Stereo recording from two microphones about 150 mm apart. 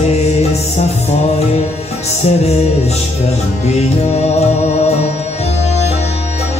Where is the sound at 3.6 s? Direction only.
45° left (ahead or behind).